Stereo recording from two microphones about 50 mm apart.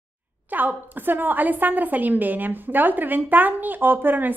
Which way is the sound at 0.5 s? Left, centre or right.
Right.